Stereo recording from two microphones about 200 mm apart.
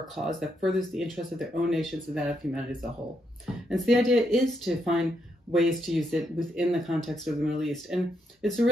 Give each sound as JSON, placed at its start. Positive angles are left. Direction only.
{"t": 0.3, "sound": "speech", "side_deg": 0}
{"t": 3.7, "sound": "speech", "side_deg": 0}